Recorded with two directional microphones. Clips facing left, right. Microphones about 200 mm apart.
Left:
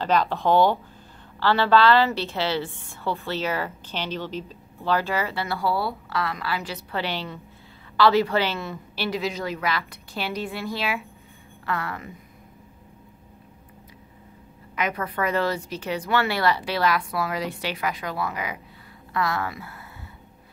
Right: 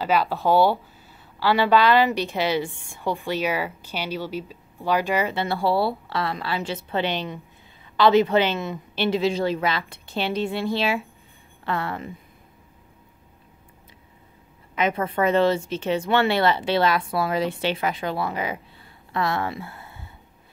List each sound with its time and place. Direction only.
0.0 s a woman's voice: 10° right (ahead or behind); by 12.1 s 25° right (ahead or behind)
14.8 s speech: 25° right (ahead or behind)